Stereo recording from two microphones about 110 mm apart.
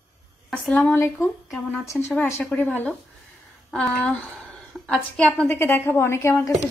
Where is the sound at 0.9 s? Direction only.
20° left (ahead or behind).